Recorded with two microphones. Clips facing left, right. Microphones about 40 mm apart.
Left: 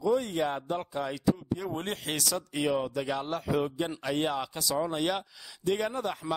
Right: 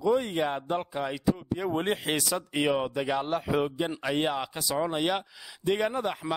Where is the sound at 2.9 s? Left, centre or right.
Centre.